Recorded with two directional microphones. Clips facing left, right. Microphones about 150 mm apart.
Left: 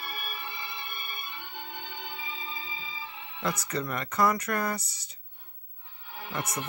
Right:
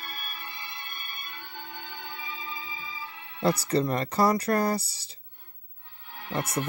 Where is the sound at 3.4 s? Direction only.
30° right (ahead or behind).